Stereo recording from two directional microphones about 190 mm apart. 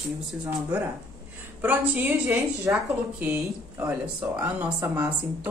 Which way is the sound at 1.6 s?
10° right (ahead or behind).